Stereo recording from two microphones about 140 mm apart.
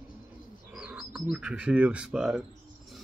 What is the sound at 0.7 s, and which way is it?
Speech, 10° right (ahead or behind).